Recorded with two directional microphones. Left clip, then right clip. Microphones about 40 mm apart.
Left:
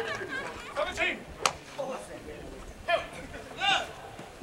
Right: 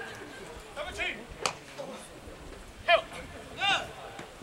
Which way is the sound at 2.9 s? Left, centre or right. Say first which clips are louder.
Right 4 dB; right.